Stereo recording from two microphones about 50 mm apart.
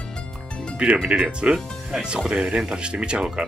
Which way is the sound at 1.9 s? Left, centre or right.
Centre.